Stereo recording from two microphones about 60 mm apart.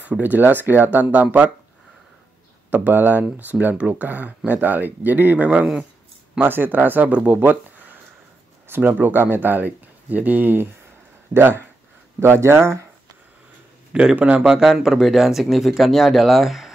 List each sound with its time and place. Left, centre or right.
0.0 s speech: right
2.7 s speech: right
7.3 s a sound: right
8.6 s speech: right
14.1 s speech: right
14.4 s speech: centre